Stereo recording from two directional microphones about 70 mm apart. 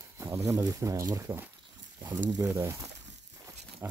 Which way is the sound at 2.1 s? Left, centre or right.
Right.